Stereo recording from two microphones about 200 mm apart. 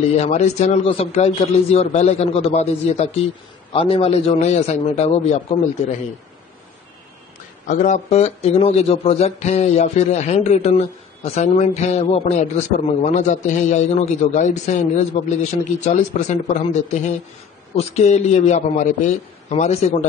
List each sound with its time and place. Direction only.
0.2 s speech: 35° left (ahead or behind)
7.6 s speech: 40° left (ahead or behind)